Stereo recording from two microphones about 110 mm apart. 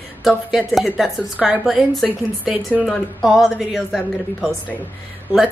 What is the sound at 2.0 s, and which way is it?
Speech, 15° right (ahead or behind).